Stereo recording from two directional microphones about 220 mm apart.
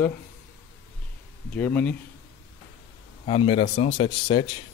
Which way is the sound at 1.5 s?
5° left (ahead or behind).